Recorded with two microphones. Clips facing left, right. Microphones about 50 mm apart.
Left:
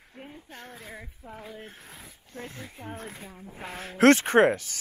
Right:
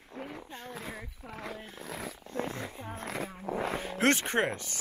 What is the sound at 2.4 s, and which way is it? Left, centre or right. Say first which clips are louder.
Purr: right 4 dB; right.